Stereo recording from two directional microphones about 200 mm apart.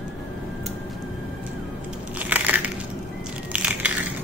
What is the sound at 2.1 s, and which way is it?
Crushing, 10° right (ahead or behind).